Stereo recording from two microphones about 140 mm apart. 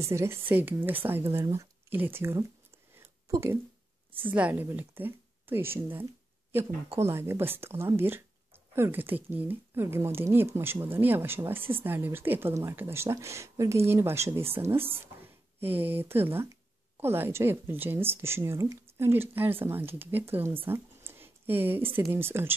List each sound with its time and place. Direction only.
0.0 s speech: 20° right (ahead or behind)
3.0 s a sound: 20° right (ahead or behind)
4.2 s speech: 10° right (ahead or behind)